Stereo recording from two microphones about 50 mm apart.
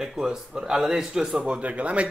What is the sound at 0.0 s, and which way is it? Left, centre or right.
A man's voice, centre.